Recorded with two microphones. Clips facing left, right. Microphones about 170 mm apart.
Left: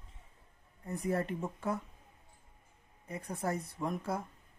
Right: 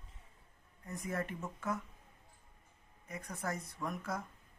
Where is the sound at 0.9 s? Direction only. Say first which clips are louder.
Left 6 dB; 35° left (ahead or behind).